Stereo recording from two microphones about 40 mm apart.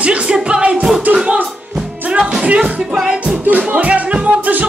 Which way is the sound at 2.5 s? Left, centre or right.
Right.